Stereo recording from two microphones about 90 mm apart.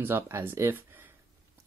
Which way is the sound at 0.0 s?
25° right (ahead or behind).